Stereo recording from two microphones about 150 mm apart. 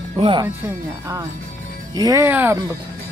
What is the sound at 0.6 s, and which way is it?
Speech, 20° right (ahead or behind).